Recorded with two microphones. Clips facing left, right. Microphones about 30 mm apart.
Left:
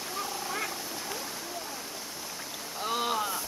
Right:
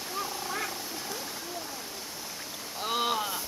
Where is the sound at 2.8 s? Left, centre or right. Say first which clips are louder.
Right 1 dB; centre.